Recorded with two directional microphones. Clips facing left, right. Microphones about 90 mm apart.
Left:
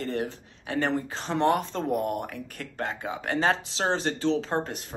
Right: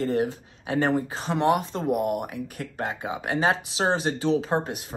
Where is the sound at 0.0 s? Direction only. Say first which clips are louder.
Right 6 dB; 20° right (ahead or behind).